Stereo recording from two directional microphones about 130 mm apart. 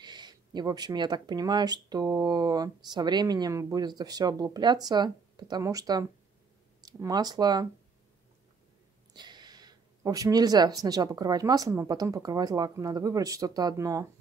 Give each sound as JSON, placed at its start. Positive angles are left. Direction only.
{"t": 0.0, "sound": "speech", "side_deg": -35}
{"t": 9.1, "sound": "speech", "side_deg": -35}